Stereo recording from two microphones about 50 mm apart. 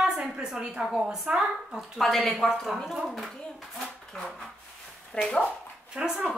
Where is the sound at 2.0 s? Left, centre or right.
Centre.